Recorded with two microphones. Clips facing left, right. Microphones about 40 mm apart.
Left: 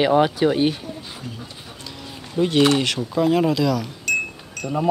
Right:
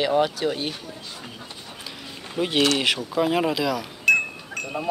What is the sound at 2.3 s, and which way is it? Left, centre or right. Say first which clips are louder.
Speech: left 4 dB; centre.